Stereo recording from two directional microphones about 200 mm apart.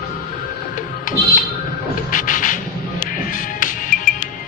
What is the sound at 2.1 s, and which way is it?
Music, 40° left (ahead or behind).